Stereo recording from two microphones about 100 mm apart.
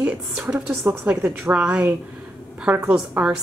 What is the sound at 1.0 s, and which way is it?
Speech, 15° right (ahead or behind).